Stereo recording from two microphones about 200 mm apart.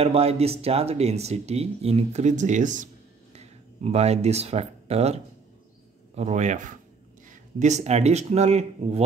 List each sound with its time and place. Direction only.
0.0 s speech: 30° right (ahead or behind)